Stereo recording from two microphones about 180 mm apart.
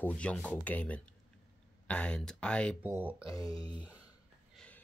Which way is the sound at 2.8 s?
10° right (ahead or behind).